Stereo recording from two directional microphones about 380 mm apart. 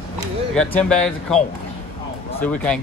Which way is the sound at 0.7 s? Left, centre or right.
Centre.